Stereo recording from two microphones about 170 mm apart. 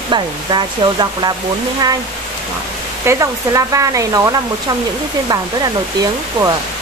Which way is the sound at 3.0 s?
20° right (ahead or behind).